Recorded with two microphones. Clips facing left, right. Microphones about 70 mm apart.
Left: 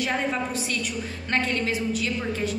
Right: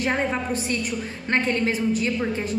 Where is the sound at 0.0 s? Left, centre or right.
Right.